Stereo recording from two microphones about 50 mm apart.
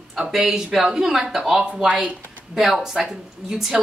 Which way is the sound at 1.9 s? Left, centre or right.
Right.